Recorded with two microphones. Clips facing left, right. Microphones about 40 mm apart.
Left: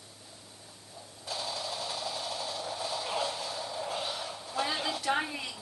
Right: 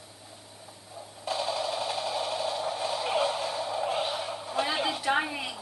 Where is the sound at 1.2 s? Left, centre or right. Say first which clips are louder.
Right 7 dB; right.